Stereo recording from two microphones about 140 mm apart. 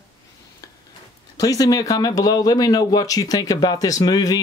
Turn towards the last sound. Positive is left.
turn(degrees=25)  # may be behind; listen again after turning